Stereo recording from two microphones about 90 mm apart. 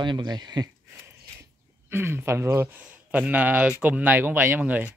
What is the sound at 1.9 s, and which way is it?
Speech, 25° right (ahead or behind).